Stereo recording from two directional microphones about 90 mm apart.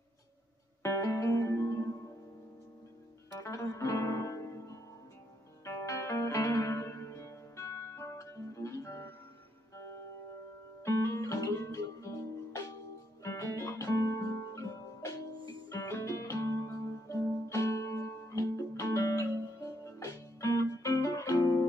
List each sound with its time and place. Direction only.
0.8 s music: 35° left (ahead or behind)
3.3 s music: 35° left (ahead or behind)
10.8 s guitar: 35° left (ahead or behind)
13.2 s music: 30° left (ahead or behind); by 21.6 s 45° left (ahead or behind)